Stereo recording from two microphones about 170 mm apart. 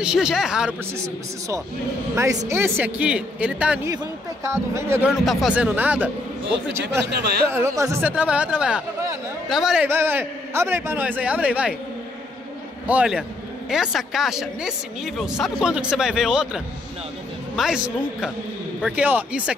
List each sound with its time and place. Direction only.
0.0 s speech: 5° right (ahead or behind)
0.9 s a man's voice: 20° right (ahead or behind)
5.1 s a man's voice: centre (ahead or behind)
7.1 s speech: 75° right (ahead or behind)
7.4 s a man's voice: 15° right (ahead or behind)
9.8 s a man's voice: 15° right (ahead or behind)
12.8 s a man's voice: 5° right (ahead or behind)